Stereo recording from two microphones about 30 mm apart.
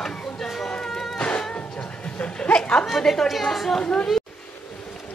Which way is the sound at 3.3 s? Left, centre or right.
Centre.